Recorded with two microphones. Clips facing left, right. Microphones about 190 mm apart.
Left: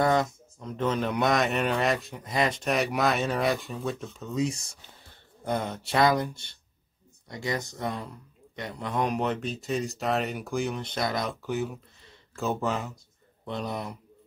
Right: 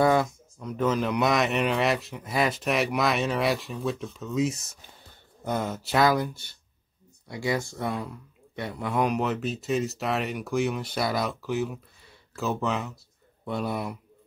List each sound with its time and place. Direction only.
0.0 s a sound: 5° right (ahead or behind)
0.7 s a man's voice: 5° right (ahead or behind)
7.6 s speech: 20° left (ahead or behind)
8.5 s a man's voice: 10° right (ahead or behind)